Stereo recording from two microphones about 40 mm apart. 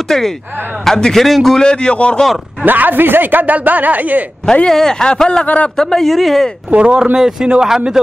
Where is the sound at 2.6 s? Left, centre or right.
Right.